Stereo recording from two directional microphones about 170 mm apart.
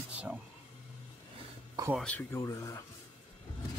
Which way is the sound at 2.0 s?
10° left (ahead or behind).